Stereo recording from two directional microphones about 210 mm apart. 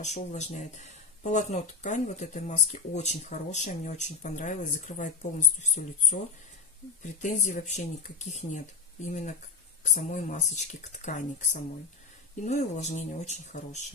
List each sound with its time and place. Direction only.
0.0 s speech: 35° left (ahead or behind)